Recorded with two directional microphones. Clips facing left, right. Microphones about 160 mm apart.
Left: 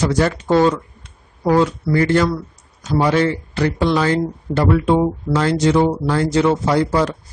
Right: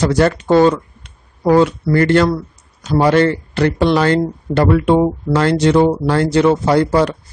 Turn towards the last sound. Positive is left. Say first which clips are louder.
# right 3 dB
turn(degrees=-65)  # may be behind; listen again after turning